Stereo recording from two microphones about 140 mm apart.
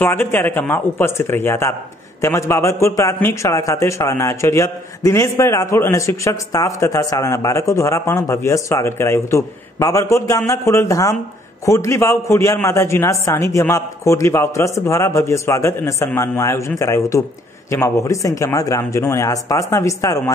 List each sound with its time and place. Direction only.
0.0 s a man's voice: 15° left (ahead or behind)